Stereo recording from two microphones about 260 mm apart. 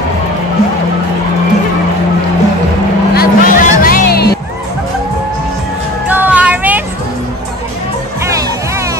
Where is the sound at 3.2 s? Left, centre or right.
Left.